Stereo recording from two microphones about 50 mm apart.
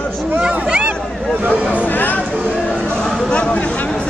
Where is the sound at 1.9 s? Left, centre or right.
Left.